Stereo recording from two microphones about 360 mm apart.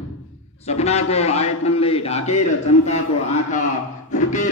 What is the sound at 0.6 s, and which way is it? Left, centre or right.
A man's voice, centre.